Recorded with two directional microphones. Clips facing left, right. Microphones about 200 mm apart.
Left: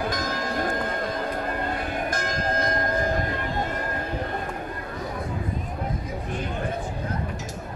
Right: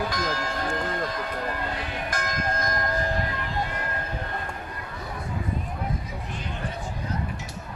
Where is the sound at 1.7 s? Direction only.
50° left (ahead or behind).